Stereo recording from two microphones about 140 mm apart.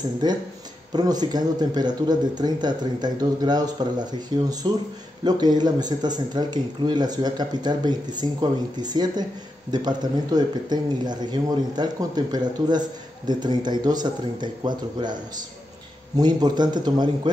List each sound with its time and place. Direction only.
0.9 s speech: 30° right (ahead or behind)
16.2 s speech: 30° right (ahead or behind)